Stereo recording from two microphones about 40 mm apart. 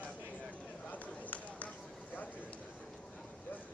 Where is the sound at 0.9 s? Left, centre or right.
Left.